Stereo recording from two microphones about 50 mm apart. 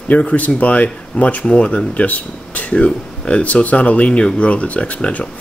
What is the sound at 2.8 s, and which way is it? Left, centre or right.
Speech, left.